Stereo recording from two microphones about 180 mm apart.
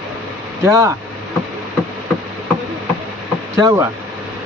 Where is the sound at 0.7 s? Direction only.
15° right (ahead or behind).